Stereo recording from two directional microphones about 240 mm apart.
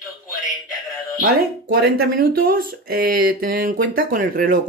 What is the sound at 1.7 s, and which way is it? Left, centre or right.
Speech, right.